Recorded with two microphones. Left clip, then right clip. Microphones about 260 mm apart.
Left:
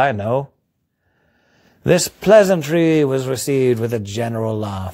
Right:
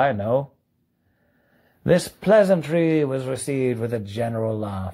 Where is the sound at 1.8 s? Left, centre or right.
Left.